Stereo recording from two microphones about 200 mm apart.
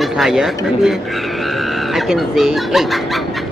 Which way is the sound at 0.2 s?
5° right (ahead or behind).